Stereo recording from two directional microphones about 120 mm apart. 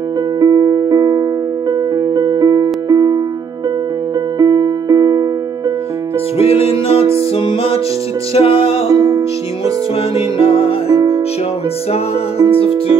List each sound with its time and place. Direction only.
0.4 s music: 30° right (ahead or behind)
4.4 s music: 30° right (ahead or behind)
6.3 s music: 55° left (ahead or behind)
8.9 s music: 30° right (ahead or behind)
10.3 s music: 50° left (ahead or behind)
11.9 s music: 55° left (ahead or behind)